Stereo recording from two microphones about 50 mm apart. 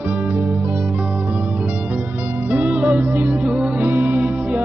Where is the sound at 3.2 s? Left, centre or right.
Right.